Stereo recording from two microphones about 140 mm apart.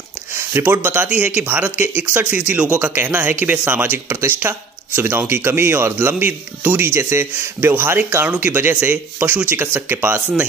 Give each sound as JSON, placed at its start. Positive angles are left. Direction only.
{"t": 0.3, "sound": "speech", "side_deg": -15}